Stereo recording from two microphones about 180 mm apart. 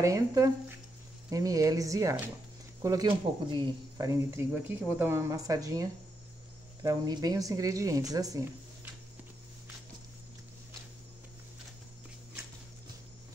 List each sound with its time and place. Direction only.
0.0 s speech: 20° right (ahead or behind)